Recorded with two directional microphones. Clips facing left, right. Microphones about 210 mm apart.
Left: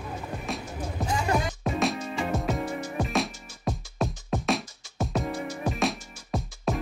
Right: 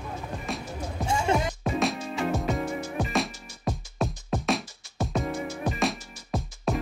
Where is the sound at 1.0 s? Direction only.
25° right (ahead or behind).